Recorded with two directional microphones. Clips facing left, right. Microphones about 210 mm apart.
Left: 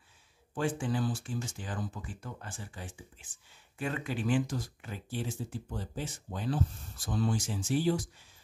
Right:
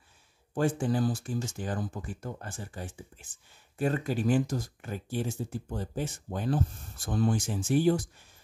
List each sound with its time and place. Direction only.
0.6 s speech: 40° right (ahead or behind)